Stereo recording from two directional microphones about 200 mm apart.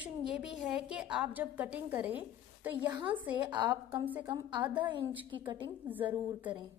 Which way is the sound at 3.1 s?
10° right (ahead or behind).